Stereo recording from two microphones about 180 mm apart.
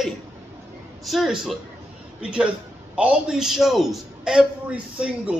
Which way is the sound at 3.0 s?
5° right (ahead or behind).